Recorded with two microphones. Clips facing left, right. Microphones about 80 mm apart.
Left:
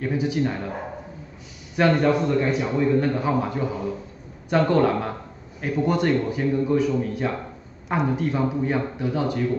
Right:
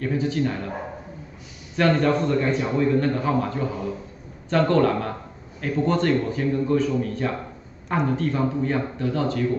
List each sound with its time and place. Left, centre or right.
0.0 s a man's voice: centre
1.8 s a man's voice: centre